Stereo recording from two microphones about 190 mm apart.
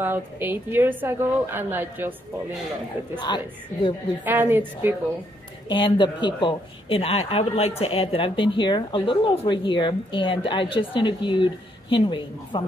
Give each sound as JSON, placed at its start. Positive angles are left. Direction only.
{"t": 0.0, "sound": "a woman's voice", "side_deg": -10}
{"t": 3.2, "sound": "speech", "side_deg": 25}
{"t": 4.2, "sound": "a woman's voice", "side_deg": -10}
{"t": 5.7, "sound": "speech", "side_deg": 25}